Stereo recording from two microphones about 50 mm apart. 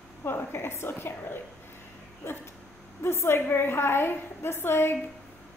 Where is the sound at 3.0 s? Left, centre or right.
Left.